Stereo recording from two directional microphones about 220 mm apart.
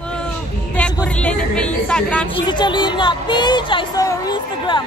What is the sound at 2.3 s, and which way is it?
Speech, 20° left (ahead or behind).